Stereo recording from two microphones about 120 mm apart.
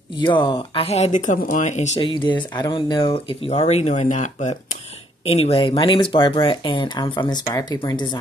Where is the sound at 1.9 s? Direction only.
45° left (ahead or behind); by 4.5 s 85° left.